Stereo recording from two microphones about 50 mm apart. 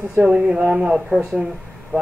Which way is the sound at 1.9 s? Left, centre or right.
Right.